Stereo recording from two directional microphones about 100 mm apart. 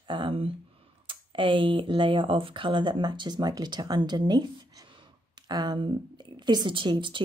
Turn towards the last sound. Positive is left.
turn(degrees=-55)  # may be behind; listen again after turning